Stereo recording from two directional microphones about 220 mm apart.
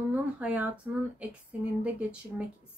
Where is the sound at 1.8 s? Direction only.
5° right (ahead or behind).